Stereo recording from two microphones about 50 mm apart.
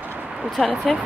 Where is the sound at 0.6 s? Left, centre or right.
Centre.